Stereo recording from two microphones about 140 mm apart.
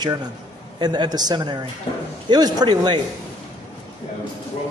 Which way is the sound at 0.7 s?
30° right (ahead or behind).